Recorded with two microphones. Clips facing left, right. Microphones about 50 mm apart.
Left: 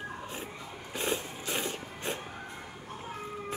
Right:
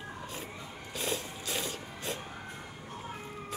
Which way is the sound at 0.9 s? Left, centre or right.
Left.